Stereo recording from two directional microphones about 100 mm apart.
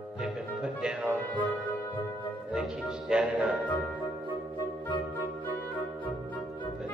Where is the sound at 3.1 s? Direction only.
10° right (ahead or behind).